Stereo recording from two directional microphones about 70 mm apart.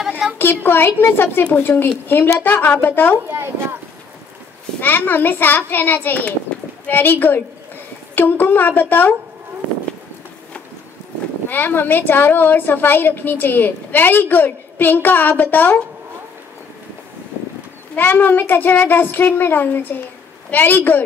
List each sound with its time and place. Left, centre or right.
0.4 s a child's voice: left
3.3 s speech: right
4.7 s a woman's voice: left
11.4 s a woman's voice: left
17.9 s a woman's voice: left